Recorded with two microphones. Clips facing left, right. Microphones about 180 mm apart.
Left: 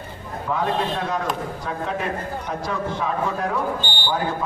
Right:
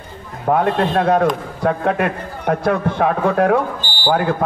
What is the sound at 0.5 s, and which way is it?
A man's voice, 60° right (ahead or behind).